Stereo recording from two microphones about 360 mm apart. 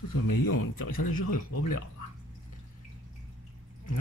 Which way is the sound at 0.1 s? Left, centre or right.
Left.